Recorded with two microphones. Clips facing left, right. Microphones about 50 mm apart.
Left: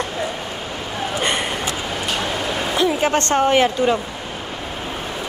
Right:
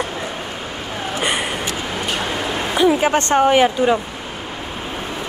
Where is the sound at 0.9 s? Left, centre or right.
Centre.